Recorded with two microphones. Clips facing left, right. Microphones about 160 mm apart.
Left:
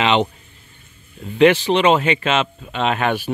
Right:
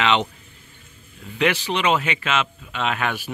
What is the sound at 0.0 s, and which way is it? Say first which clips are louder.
Speech: left 3 dB; 20° left (ahead or behind).